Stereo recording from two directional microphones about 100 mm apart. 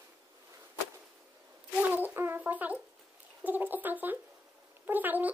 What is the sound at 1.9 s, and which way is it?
Brass instrument, 20° right (ahead or behind).